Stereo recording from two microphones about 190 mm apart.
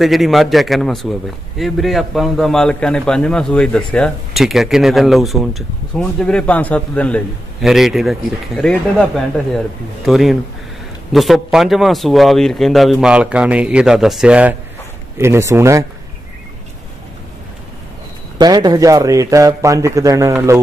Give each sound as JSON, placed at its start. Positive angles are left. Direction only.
{"t": 0.0, "sound": "a man's voice", "side_deg": 0}
{"t": 18.4, "sound": "a man's voice", "side_deg": -20}